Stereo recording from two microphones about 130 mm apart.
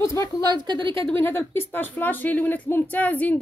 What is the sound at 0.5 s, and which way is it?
Speech, 35° right (ahead or behind).